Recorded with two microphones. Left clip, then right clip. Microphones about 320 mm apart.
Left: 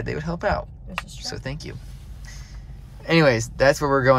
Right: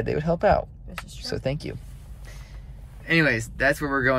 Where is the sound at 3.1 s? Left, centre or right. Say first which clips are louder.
Left 3 dB; centre.